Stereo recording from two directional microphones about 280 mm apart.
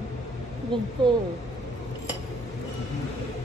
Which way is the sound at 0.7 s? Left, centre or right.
Centre.